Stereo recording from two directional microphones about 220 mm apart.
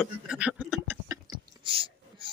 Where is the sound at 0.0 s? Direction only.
5° right (ahead or behind); by 2.3 s 25° right (ahead or behind).